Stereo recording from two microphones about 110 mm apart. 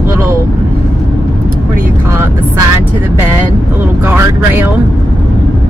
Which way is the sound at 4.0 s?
15° right (ahead or behind).